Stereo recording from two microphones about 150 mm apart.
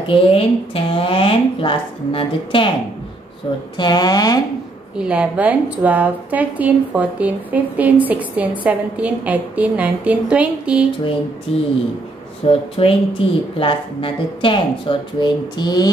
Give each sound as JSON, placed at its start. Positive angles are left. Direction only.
{"t": 0.1, "sound": "a woman's voice", "side_deg": 35}
{"t": 3.7, "sound": "a woman's voice", "side_deg": 30}
{"t": 4.9, "sound": "a woman's voice", "side_deg": -10}
{"t": 11.5, "sound": "a woman's voice", "side_deg": 40}